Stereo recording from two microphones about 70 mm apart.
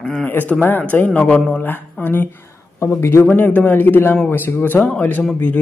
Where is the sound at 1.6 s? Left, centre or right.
Left.